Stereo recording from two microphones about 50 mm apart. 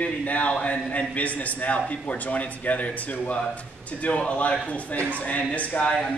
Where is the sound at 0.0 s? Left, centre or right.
Left.